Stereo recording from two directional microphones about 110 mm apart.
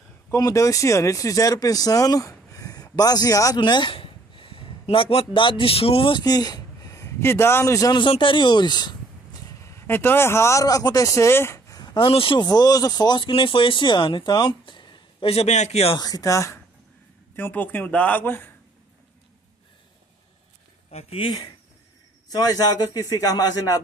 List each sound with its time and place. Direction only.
0.4 s speech: 30° left (ahead or behind); by 6.2 s 55° left (ahead or behind)
6.2 s a man's voice: 35° left (ahead or behind)
7.9 s speech: 50° left (ahead or behind)
9.7 s speech: 20° left (ahead or behind)
11.8 s a sound: 40° left (ahead or behind)
12.1 s speech: 55° left (ahead or behind)
12.4 s a man's voice: 35° left (ahead or behind)
15.2 s a man's voice: 75° left (ahead or behind)
16.0 s a man's voice: 35° left (ahead or behind)
17.4 s speech: 15° left (ahead or behind)
20.9 s speech: 65° left (ahead or behind)
22.3 s a man's voice: 35° left (ahead or behind)